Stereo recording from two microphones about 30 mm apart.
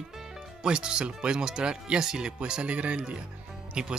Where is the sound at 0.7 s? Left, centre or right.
Right.